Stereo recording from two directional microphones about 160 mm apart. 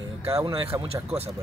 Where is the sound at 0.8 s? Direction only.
40° right (ahead or behind).